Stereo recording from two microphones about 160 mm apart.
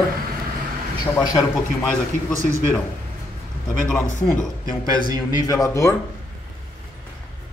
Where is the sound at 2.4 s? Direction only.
15° right (ahead or behind).